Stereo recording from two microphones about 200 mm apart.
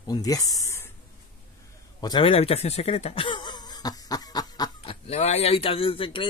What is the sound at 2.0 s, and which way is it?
Speech, 20° left (ahead or behind).